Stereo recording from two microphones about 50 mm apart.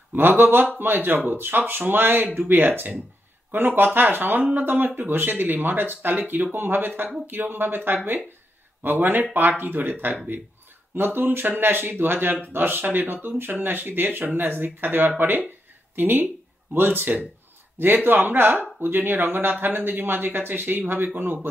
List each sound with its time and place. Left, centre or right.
0.1 s speech: right
11.1 s speech: right